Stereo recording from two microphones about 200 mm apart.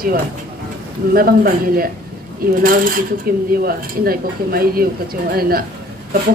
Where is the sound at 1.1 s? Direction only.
45° right (ahead or behind).